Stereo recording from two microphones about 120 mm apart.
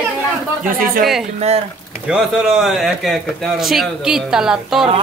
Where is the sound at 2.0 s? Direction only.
5° right (ahead or behind).